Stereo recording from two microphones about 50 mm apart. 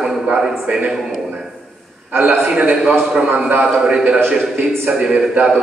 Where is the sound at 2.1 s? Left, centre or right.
Right.